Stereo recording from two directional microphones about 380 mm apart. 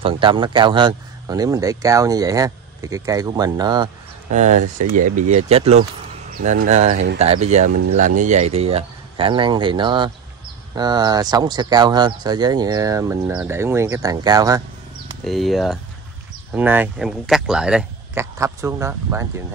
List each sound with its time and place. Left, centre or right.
0.0 s speech: centre